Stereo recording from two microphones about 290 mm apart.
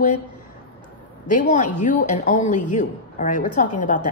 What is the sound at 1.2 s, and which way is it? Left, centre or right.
A woman's voice, left.